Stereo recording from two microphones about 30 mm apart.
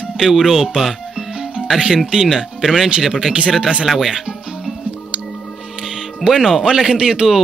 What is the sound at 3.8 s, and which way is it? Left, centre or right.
Speech, centre.